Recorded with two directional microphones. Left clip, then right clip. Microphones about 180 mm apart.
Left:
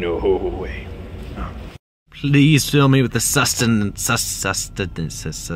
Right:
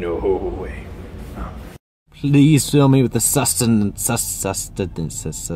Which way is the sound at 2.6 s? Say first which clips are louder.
Right 1 dB; 20° left (ahead or behind).